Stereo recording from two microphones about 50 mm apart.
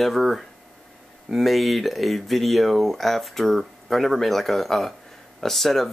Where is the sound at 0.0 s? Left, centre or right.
Centre.